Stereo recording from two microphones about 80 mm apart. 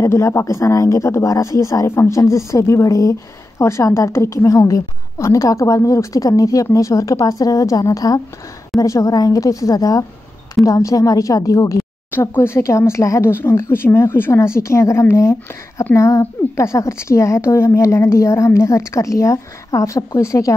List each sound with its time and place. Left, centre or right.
0.0 s a woman's voice: left
12.1 s speech: left